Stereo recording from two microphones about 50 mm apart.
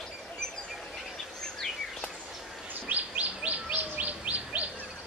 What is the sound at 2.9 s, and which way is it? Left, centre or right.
Chirp, right.